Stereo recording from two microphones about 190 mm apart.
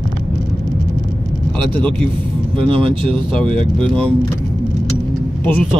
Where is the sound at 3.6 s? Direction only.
5° left (ahead or behind).